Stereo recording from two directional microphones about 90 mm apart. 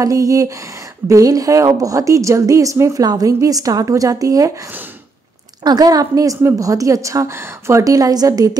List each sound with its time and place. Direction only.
0.0 s a woman's voice: 40° right (ahead or behind)
5.6 s a woman's voice: 50° right (ahead or behind)